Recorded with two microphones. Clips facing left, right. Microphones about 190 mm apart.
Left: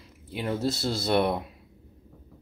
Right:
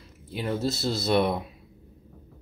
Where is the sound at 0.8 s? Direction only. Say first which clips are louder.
Right 1 dB; 5° left (ahead or behind).